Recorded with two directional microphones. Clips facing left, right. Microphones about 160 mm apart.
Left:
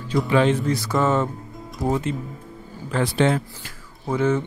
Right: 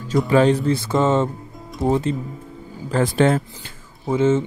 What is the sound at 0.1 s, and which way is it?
Speech, 40° right (ahead or behind).